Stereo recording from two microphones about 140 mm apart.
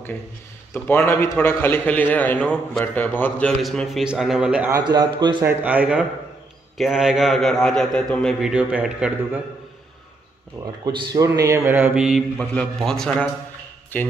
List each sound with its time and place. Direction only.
0.7 s a man's voice: 15° left (ahead or behind)
3.5 s a man's voice: centre (ahead or behind)
4.6 s a man's voice: 25° right (ahead or behind)
5.4 s a man's voice: 15° right (ahead or behind)
11.1 s a sound: 25° right (ahead or behind)
12.0 s a man's voice: 5° right (ahead or behind); by 14.1 s 15° left (ahead or behind)